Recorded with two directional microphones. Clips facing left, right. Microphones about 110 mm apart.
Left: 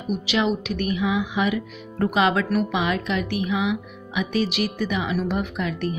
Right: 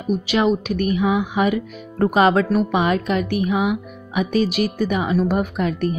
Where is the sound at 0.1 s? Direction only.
45° right (ahead or behind).